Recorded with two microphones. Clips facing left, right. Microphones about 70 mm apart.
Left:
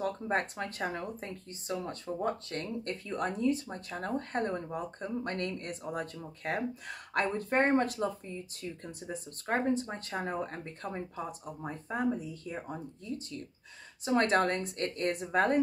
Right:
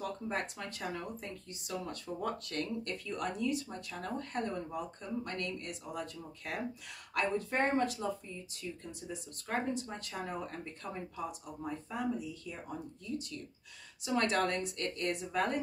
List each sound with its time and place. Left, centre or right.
0.0 s speech: left